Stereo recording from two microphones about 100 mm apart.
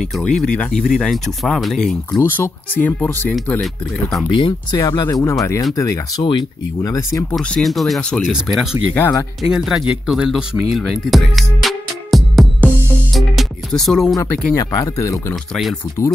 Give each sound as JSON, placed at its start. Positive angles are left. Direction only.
{"t": 0.2, "sound": "speech", "side_deg": 10}
{"t": 2.1, "sound": "speech", "side_deg": 25}
{"t": 4.3, "sound": "speech", "side_deg": 55}
{"t": 4.7, "sound": "speech", "side_deg": 40}
{"t": 7.3, "sound": "speech", "side_deg": 0}
{"t": 9.0, "sound": "speech", "side_deg": 15}
{"t": 9.4, "sound": "speech", "side_deg": -5}
{"t": 13.1, "sound": "music", "side_deg": 0}
{"t": 14.5, "sound": "speech", "side_deg": 40}